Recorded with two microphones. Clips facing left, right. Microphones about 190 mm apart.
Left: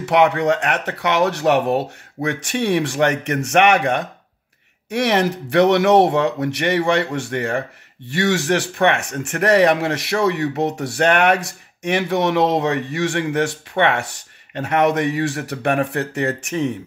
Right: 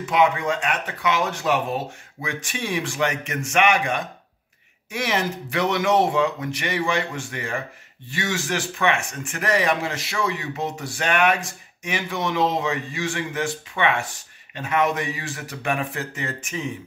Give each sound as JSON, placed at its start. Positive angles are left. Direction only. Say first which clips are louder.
{"t": 0.0, "sound": "speech", "louder": "left 5 dB", "side_deg": 70}